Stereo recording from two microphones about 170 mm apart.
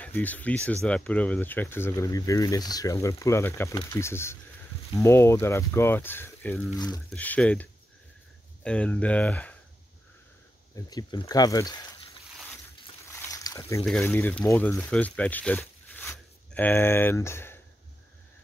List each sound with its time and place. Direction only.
0.0 s speech: 10° left (ahead or behind)
8.6 s speech: 5° left (ahead or behind)
10.9 s speech: 25° left (ahead or behind)
13.1 s a sound: 15° left (ahead or behind)
13.8 s speech: 10° left (ahead or behind)